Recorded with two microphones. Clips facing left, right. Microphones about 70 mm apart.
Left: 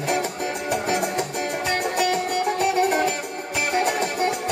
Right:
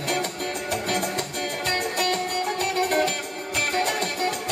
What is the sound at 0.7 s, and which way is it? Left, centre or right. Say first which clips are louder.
Music: left 3 dB; centre.